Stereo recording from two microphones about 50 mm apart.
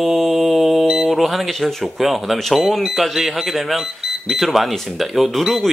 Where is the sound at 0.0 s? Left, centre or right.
Centre.